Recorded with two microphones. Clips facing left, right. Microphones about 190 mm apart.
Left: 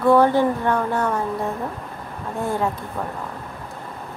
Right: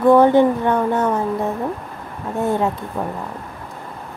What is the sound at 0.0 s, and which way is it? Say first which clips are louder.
Speech: right 4 dB; 20° right (ahead or behind).